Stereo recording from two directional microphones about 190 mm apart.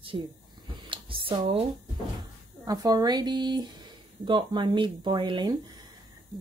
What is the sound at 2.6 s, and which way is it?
Speech, 20° right (ahead or behind).